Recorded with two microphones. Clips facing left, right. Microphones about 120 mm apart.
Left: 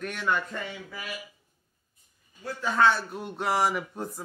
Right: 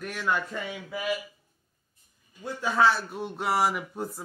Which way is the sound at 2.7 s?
5° right (ahead or behind).